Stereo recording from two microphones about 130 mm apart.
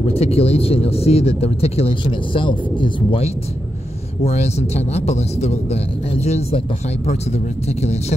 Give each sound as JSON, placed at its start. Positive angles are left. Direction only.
{"t": 0.0, "sound": "speech", "side_deg": 50}